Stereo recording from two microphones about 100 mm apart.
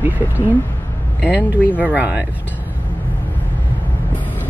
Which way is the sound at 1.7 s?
15° right (ahead or behind).